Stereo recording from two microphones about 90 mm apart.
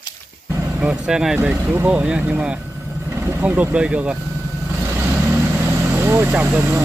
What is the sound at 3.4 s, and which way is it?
Speech, 15° right (ahead or behind).